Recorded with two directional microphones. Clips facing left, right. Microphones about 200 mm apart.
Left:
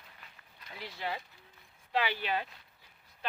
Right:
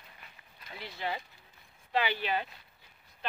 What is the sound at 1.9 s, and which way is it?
Speech, centre (ahead or behind).